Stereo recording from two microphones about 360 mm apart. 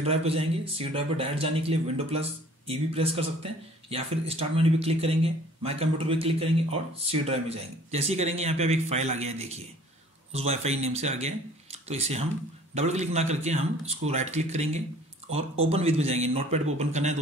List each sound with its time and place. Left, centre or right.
0.0 s a man's voice: centre